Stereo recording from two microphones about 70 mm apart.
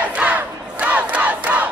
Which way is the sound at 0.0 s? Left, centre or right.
Centre.